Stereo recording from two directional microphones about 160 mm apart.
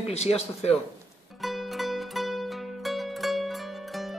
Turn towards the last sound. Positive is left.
turn(degrees=0)  # may be behind; listen again after turning